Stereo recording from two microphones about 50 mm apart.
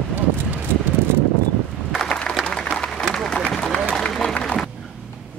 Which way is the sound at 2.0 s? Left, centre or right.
Left.